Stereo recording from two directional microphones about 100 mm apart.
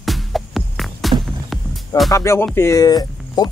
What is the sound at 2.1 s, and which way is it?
Music, 30° left (ahead or behind).